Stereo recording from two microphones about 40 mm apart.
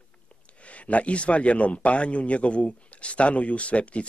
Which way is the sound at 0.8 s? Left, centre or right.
Left.